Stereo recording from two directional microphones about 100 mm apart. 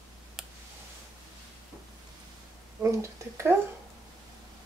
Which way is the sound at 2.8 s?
25° right (ahead or behind).